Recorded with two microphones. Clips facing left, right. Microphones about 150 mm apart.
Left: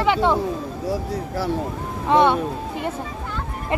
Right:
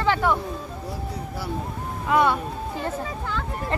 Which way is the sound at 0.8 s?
90° left.